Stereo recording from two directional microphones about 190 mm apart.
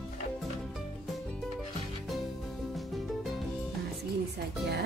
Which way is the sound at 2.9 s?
Centre (ahead or behind).